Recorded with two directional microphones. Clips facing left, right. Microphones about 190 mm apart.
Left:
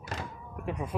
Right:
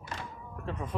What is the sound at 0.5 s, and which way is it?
Speech, 15° left (ahead or behind).